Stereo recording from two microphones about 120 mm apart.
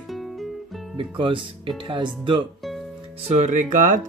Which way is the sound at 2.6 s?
Centre (ahead or behind).